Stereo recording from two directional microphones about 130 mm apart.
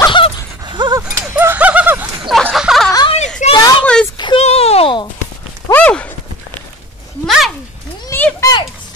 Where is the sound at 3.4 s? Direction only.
65° left (ahead or behind).